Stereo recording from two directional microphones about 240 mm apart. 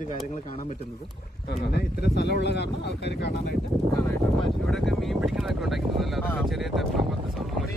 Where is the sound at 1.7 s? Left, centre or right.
Left.